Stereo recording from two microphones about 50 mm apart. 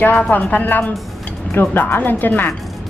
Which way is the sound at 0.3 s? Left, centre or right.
Left.